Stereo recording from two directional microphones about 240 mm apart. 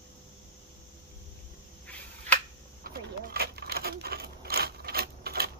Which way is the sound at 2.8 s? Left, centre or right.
Right.